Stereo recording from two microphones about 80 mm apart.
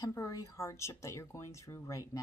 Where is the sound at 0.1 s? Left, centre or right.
Left.